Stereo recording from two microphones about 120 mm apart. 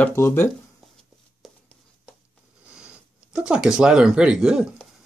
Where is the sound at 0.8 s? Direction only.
Centre (ahead or behind).